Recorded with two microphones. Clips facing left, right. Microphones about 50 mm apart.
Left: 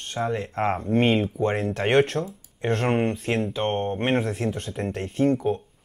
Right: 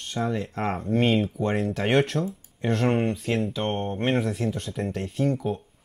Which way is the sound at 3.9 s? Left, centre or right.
Left.